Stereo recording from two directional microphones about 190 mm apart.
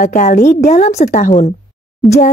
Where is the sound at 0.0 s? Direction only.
45° left (ahead or behind).